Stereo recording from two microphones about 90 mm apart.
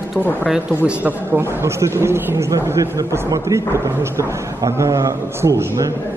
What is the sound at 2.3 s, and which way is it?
A man's voice, 40° right (ahead or behind).